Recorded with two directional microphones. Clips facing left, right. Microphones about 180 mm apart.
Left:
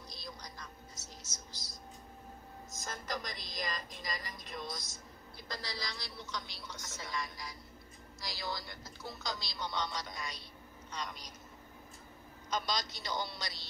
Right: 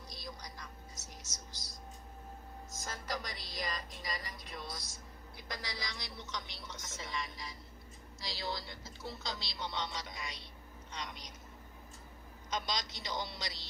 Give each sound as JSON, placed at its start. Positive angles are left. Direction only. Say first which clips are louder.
{"t": 0.9, "sound": "a sound", "louder": "even", "side_deg": -15}
{"t": 2.8, "sound": "music", "louder": "left 1 dB", "side_deg": -10}
{"t": 4.6, "sound": "a woman's voice", "louder": "left 4 dB", "side_deg": -10}
{"t": 12.4, "sound": "speech", "louder": "left 2 dB", "side_deg": -20}